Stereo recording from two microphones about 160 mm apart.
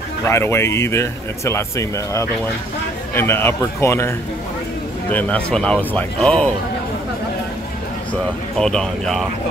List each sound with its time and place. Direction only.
0.2 s speech: 15° left (ahead or behind)
5.1 s speech: 5° left (ahead or behind)
8.5 s speech: 5° left (ahead or behind)